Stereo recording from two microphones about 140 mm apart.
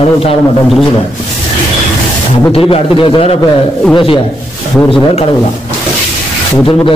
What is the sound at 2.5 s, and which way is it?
A man's voice, 45° left (ahead or behind).